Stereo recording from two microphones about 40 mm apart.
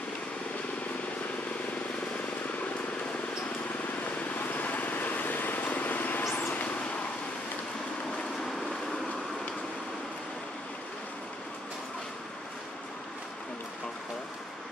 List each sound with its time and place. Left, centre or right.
4.0 s vehicle: left